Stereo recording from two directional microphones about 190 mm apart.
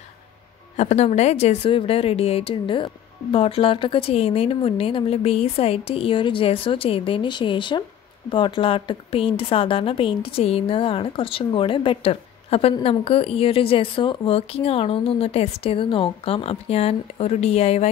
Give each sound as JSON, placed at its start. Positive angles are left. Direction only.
{"t": 0.7, "sound": "a woman's voice", "side_deg": 35}